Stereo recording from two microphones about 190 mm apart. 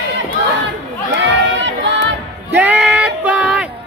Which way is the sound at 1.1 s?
70° right (ahead or behind).